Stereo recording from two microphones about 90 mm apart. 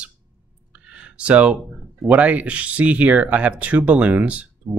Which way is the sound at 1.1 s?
15° right (ahead or behind).